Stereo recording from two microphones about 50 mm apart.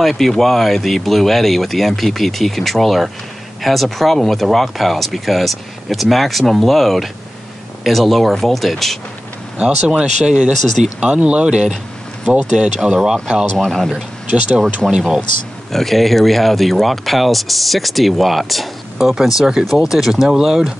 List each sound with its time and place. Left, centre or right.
0.0 s speech: centre
9.6 s speech: centre
13.6 s speech: centre
14.9 s speech: centre
15.7 s speech: centre